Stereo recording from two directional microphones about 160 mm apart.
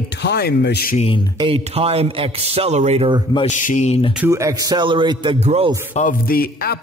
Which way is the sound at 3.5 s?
50° left (ahead or behind).